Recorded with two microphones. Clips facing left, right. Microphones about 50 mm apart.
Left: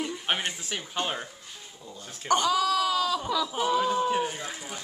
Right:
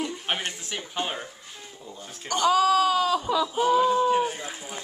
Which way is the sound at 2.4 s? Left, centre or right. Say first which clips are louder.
Right 5 dB; right.